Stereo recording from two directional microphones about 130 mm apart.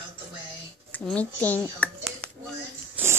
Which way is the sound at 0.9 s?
10° left (ahead or behind).